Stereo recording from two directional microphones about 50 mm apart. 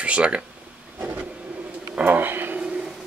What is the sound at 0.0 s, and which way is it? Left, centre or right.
Speech, right.